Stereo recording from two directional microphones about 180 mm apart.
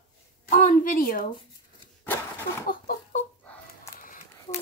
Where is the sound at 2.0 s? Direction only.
10° left (ahead or behind).